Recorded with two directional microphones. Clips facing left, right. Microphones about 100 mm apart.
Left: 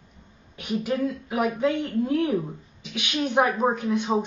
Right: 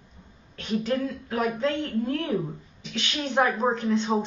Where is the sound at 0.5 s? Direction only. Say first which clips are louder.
Even; 10° left (ahead or behind).